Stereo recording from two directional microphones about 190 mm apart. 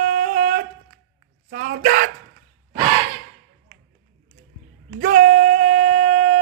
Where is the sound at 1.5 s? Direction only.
50° right (ahead or behind).